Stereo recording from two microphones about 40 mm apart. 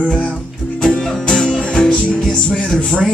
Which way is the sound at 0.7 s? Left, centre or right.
Centre.